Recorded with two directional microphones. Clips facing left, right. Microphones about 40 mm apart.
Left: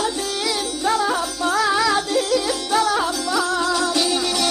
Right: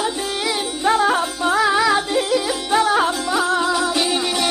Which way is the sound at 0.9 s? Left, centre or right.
Right.